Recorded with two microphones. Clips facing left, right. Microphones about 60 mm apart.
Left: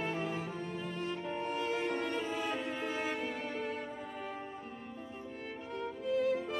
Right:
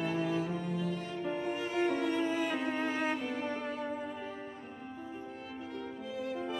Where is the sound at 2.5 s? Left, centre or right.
Right.